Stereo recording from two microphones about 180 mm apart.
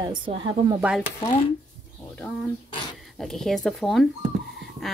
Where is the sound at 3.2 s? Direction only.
Centre (ahead or behind).